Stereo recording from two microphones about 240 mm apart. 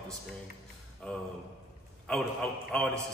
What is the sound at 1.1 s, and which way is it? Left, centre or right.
Speech, centre.